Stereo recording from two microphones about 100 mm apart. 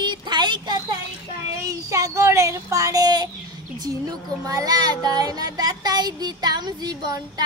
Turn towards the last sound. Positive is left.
turn(degrees=-40)  # may be behind; listen again after turning